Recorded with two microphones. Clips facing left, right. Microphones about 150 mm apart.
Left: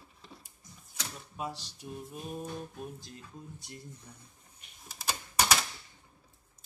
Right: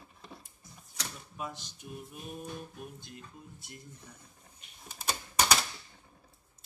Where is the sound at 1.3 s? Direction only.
30° left (ahead or behind).